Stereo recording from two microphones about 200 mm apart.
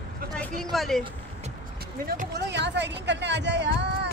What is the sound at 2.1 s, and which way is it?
Speech, 55° right (ahead or behind).